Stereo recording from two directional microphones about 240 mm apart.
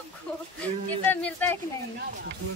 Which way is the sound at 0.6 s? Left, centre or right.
Centre.